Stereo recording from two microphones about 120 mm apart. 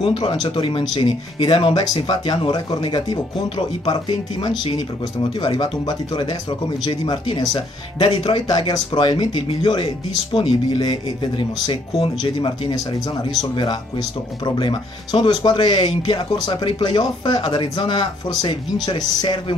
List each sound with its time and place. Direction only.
0.0 s speech: 40° left (ahead or behind)